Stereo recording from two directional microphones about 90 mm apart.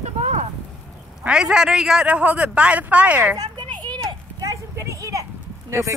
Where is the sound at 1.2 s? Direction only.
10° right (ahead or behind).